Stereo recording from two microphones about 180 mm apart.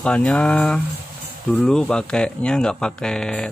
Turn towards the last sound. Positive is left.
turn(degrees=5)  # may be behind; listen again after turning